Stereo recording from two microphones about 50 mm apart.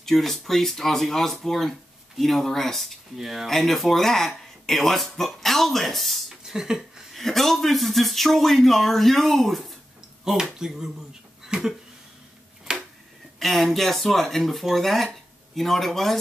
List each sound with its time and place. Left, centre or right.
0.0 s speech: centre
3.2 s speech: centre
3.4 s speech: centre
7.2 s speech: centre
10.2 s speech: centre
11.4 s a sound: centre
13.4 s speech: centre